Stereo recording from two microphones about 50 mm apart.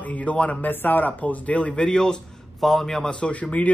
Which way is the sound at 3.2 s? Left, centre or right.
Left.